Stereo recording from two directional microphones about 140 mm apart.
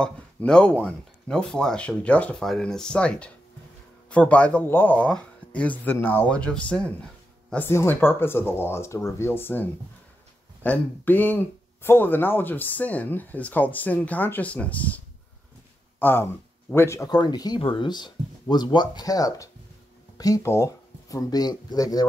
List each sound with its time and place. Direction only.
0.0 s speech: 5° left (ahead or behind)
16.0 s speech: 15° left (ahead or behind)